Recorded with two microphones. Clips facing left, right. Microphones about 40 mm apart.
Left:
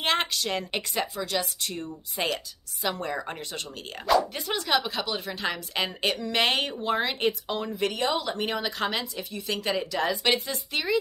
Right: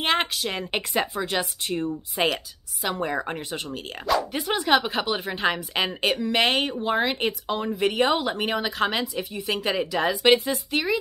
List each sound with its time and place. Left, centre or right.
0.0 s speech: centre
0.7 s a woman's voice: right
2.8 s speech: centre
3.1 s a woman's voice: right
6.3 s speech: centre
8.0 s a woman's voice: right
8.5 s speech: centre